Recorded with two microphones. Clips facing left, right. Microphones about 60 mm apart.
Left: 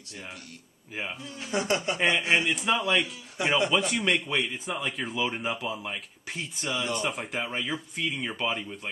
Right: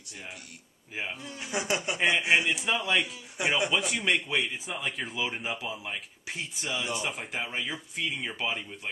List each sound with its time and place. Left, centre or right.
1.2 s speech: right; by 3.1 s centre
3.3 s speech: centre
3.7 s speech: centre